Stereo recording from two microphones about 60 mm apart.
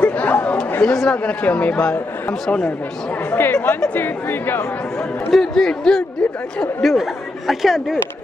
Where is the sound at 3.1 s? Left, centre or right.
Left.